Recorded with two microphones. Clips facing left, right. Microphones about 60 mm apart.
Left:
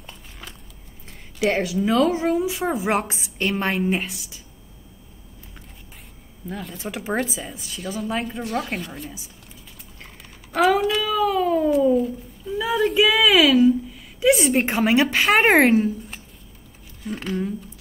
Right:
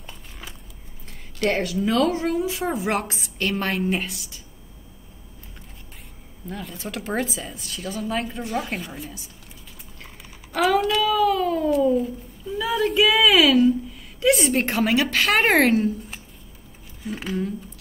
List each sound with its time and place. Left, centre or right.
0.0 s a sound: centre
1.4 s speech: centre
2.9 s a woman's voice: centre
3.7 s speech: centre
6.5 s speech: centre
10.5 s a woman's voice: centre
17.0 s speech: centre